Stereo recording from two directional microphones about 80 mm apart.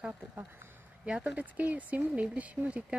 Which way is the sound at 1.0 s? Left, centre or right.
Centre.